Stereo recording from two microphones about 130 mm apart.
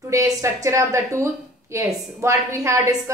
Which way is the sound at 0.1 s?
25° right (ahead or behind).